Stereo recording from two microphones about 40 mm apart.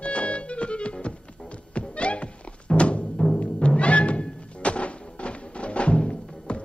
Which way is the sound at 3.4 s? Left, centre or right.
Left.